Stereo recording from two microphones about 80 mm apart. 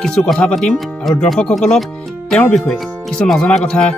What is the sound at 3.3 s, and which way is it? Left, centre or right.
Speech, centre.